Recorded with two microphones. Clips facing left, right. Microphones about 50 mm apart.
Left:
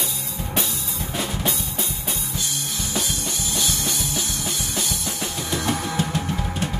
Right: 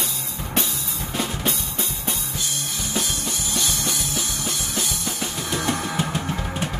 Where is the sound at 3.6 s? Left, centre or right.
Centre.